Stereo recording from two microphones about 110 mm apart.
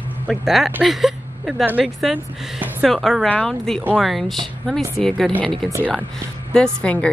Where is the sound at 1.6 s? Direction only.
15° right (ahead or behind).